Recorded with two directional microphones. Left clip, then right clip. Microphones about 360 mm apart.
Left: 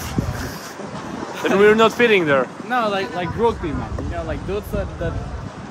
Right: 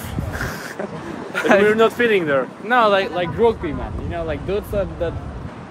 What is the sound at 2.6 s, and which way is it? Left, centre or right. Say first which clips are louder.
Speech: right 5 dB; centre.